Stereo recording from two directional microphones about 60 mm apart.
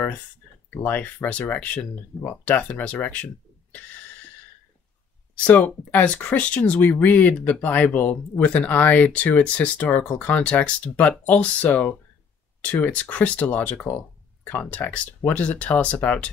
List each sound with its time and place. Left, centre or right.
0.8 s speech: left
5.4 s speech: centre